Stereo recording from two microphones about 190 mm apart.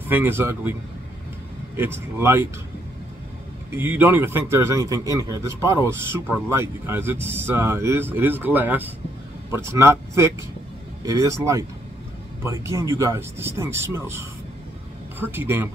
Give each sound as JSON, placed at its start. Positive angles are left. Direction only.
{"t": 0.1, "sound": "a man's voice", "side_deg": -10}
{"t": 1.8, "sound": "a man's voice", "side_deg": -10}
{"t": 3.7, "sound": "a man's voice", "side_deg": -10}